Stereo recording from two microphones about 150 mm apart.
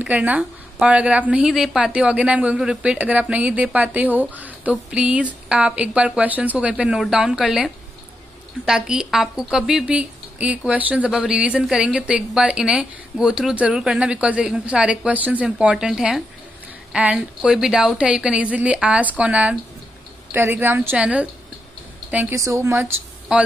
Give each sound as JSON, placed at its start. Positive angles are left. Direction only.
{"t": 0.0, "sound": "speech", "side_deg": -10}